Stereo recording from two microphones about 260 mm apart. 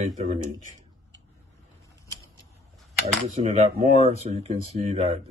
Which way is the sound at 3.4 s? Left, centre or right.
Right.